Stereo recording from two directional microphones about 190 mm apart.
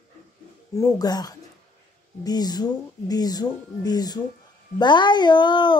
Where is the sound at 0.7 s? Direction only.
20° left (ahead or behind).